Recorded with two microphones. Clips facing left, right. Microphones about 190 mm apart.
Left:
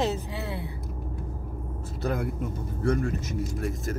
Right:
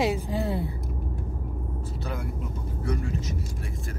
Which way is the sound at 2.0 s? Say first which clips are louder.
Left 7 dB; 50° left (ahead or behind).